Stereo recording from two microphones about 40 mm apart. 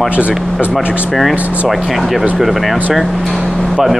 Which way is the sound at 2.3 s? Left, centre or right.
Centre.